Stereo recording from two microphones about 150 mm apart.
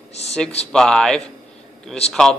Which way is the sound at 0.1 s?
45° left (ahead or behind).